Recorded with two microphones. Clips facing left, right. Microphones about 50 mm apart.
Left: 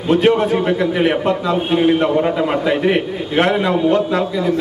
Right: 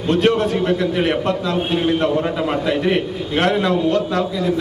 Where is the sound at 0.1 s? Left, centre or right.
Centre.